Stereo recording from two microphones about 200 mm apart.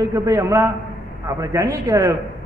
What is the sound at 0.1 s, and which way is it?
A man's voice, 15° right (ahead or behind).